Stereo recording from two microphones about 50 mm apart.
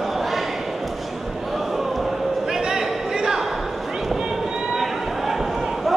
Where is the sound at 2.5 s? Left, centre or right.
Centre.